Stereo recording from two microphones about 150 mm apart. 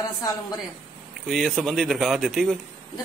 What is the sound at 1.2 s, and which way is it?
Speech, centre (ahead or behind).